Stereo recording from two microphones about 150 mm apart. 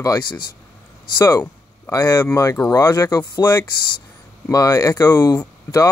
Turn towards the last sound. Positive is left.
turn(degrees=20)  # may be behind; listen again after turning